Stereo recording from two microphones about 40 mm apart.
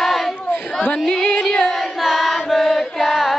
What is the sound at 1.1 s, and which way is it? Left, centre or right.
Carnatic music, centre.